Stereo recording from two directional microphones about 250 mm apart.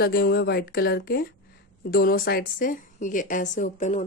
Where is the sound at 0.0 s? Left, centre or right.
Left.